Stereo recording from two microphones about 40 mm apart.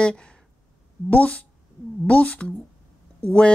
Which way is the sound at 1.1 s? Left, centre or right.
Left.